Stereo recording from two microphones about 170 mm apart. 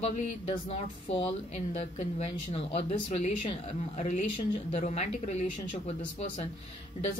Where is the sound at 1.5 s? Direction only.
40° left (ahead or behind).